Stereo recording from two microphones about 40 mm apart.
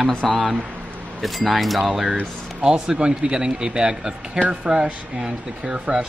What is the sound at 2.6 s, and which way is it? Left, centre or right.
Speech, right.